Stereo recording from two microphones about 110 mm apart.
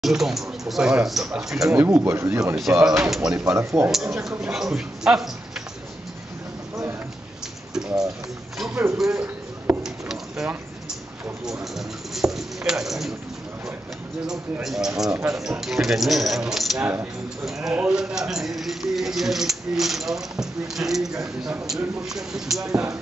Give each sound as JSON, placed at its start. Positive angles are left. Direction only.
{"t": 0.0, "sound": "speech", "side_deg": 0}
{"t": 1.7, "sound": "speech", "side_deg": -20}
{"t": 2.5, "sound": "speech", "side_deg": -5}
{"t": 3.5, "sound": "speech", "side_deg": -20}
{"t": 3.9, "sound": "speech", "side_deg": -5}
{"t": 8.5, "sound": "a sound", "side_deg": -5}
{"t": 8.9, "sound": "speech", "side_deg": -5}
{"t": 9.8, "sound": "a sound", "side_deg": -5}
{"t": 11.7, "sound": "a sound", "side_deg": -5}
{"t": 14.2, "sound": "speech", "side_deg": -5}